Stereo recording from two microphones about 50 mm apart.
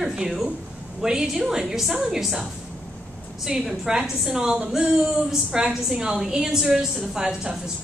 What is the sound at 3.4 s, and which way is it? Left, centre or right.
A woman's voice, centre.